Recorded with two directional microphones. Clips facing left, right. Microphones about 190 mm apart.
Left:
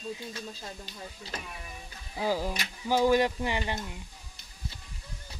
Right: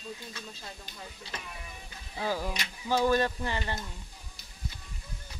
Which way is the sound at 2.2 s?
15° left (ahead or behind).